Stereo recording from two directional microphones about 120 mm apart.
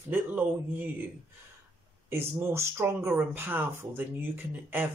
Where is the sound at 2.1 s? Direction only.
20° right (ahead or behind).